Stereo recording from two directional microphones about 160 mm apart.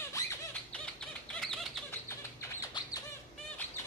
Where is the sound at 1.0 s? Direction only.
5° left (ahead or behind).